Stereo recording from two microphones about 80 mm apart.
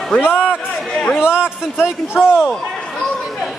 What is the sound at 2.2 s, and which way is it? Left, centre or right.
Speech, centre.